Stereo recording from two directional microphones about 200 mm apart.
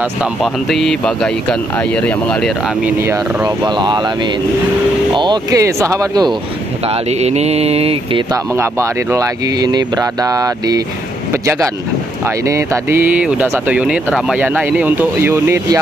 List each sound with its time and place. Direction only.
0.2 s speech: centre (ahead or behind)
2.8 s speech: 10° right (ahead or behind)
5.1 s speech: 20° right (ahead or behind)
6.9 s speech: 30° right (ahead or behind)
8.5 s speech: 15° right (ahead or behind)
12.4 s speech: 15° right (ahead or behind)